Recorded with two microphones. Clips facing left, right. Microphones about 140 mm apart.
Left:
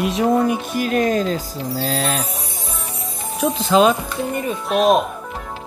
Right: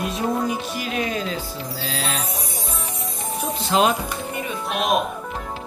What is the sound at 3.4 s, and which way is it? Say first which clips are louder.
Speech: left 9 dB; 90° left.